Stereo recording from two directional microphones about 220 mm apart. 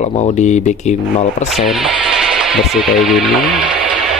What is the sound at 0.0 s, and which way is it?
Speech, 30° left (ahead or behind).